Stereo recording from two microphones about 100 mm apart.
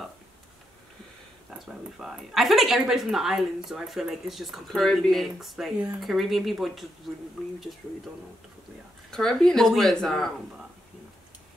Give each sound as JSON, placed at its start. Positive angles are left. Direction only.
{"t": 1.7, "sound": "a woman's voice", "side_deg": -5}
{"t": 9.1, "sound": "a woman's voice", "side_deg": 5}